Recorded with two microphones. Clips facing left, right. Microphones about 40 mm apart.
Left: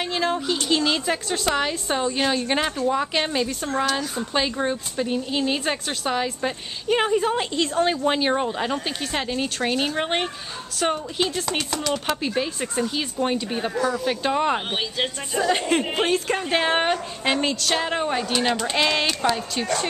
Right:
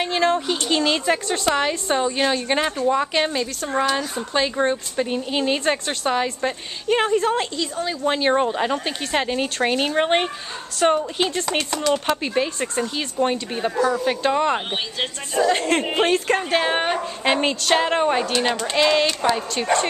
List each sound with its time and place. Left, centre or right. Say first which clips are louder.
0.0 s a woman's voice: right 4 dB; centre
3.6 s a woman's voice: right 2 dB; centre
4.6 s a woman's voice: right 4 dB; centre
7.5 s a woman's voice: left 4 dB; left
8.0 s a woman's voice: even; centre
8.3 s a woman's voice: right 4 dB; centre
13.7 s a woman's voice: right 4 dB; centre
16.4 s a woman's voice: right 1 dB; centre
16.9 s a woman's voice: right 2 dB; centre